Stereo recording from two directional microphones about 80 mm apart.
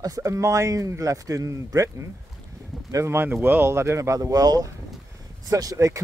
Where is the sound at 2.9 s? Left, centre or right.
Right.